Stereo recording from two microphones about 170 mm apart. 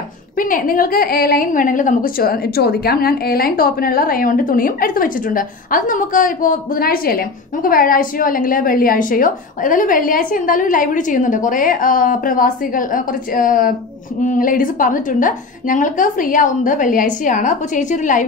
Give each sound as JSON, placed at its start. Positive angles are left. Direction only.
{"t": 0.4, "sound": "a woman's voice", "side_deg": 55}